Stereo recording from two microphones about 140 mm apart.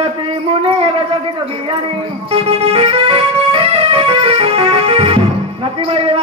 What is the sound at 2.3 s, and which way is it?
Keyboard, 45° right (ahead or behind).